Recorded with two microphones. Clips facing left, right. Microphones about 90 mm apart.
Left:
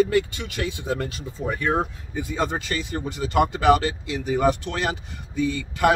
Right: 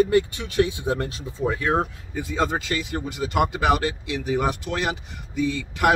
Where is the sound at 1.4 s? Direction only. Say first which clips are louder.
Right 1 dB; 10° right (ahead or behind).